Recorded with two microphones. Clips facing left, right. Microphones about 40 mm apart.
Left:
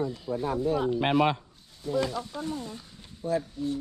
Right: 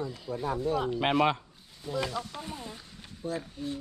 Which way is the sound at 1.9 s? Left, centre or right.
Centre.